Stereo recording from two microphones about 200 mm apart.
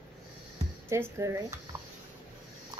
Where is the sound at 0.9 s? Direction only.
15° right (ahead or behind).